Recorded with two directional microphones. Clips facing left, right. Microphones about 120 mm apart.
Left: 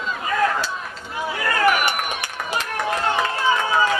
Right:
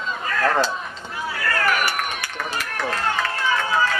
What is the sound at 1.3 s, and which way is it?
Run, 20° left (ahead or behind).